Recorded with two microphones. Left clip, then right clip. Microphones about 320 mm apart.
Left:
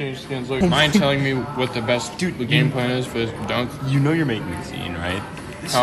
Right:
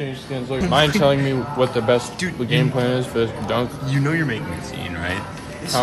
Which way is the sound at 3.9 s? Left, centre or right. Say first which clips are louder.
Left 1 dB; centre.